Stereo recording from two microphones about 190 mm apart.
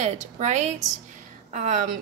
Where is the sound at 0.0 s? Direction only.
35° right (ahead or behind).